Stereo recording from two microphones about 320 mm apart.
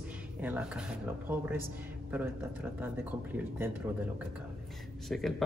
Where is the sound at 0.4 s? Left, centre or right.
Centre.